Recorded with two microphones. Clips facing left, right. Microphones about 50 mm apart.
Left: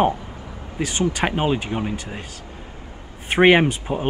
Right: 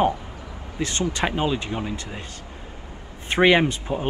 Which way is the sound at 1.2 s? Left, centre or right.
Left.